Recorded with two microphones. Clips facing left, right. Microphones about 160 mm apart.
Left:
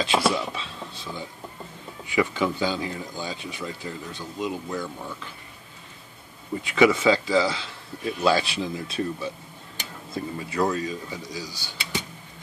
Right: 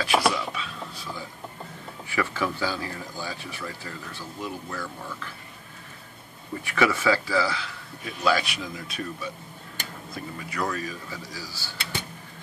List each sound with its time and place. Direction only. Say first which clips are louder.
0.0 s speech: left 1 dB; 25° left (ahead or behind)
6.6 s speech: left 4 dB; 20° left (ahead or behind)